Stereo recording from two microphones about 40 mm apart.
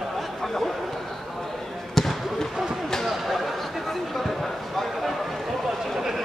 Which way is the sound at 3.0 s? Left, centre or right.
Centre.